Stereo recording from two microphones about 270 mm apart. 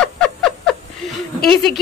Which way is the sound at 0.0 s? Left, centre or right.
Centre.